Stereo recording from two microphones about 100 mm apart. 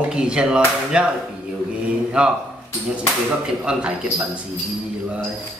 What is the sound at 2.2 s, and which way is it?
Speech, 10° right (ahead or behind).